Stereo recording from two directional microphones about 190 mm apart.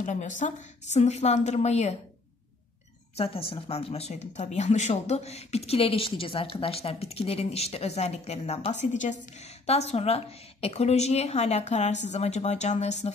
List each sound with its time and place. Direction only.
0.0 s speech: 40° left (ahead or behind)
3.2 s speech: 30° left (ahead or behind)